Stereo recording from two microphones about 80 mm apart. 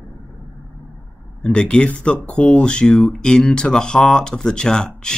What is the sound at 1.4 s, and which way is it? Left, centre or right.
Speech, centre.